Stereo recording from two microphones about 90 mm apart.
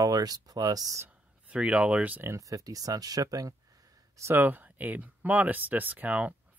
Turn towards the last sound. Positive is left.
turn(degrees=-15)  # may be behind; listen again after turning